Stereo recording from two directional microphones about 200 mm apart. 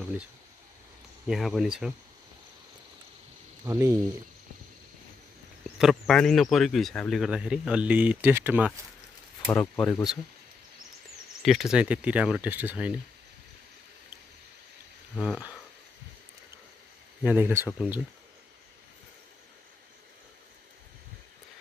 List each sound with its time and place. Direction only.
1.2 s speech: centre (ahead or behind)
3.6 s speech: 15° right (ahead or behind)
5.8 s speech: centre (ahead or behind)
9.5 s speech: 5° left (ahead or behind)
11.4 s speech: centre (ahead or behind)
15.1 s speech: 5° right (ahead or behind)
17.2 s speech: 10° right (ahead or behind)